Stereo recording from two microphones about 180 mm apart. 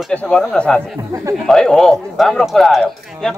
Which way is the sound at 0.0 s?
5° left (ahead or behind).